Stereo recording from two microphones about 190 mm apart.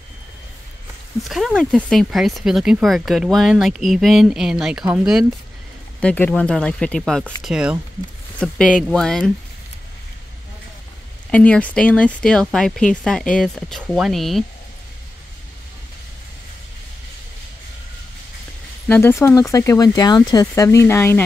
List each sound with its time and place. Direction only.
1.2 s speech: centre (ahead or behind)
5.9 s speech: 10° left (ahead or behind)
11.2 s speech: 5° left (ahead or behind)
18.9 s speech: 10° left (ahead or behind)